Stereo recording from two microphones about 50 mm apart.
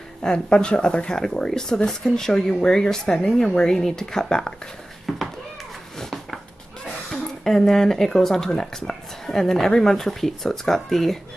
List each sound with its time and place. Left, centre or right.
0.2 s speech: centre
5.1 s speech: centre
5.9 s a sound: centre
7.1 s speech: centre